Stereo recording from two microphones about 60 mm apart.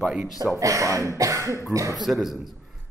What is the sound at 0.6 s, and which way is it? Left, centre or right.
Cough, right.